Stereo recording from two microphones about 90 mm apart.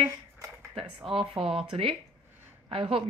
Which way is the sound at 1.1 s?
80° right.